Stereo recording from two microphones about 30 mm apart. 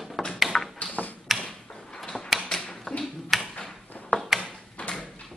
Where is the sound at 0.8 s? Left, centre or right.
Left.